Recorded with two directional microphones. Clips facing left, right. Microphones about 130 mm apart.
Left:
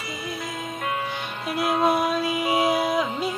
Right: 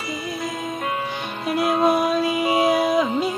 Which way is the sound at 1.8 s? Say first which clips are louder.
Right 3 dB; 25° right (ahead or behind).